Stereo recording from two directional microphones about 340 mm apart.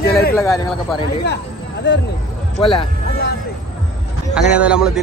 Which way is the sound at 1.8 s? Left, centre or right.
Left.